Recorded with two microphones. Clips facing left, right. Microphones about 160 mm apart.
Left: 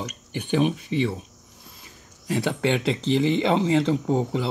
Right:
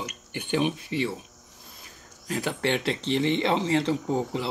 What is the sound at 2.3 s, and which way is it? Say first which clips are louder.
Speech: left 4 dB; 20° left (ahead or behind).